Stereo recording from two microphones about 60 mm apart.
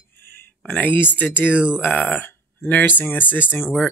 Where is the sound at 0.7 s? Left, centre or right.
Left.